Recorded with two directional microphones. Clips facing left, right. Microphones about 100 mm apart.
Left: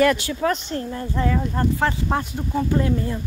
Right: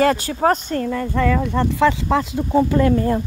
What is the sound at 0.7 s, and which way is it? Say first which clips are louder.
Speech: right 5 dB; 75° right (ahead or behind).